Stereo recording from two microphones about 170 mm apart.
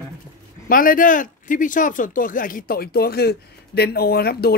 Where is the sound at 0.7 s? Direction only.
55° left (ahead or behind).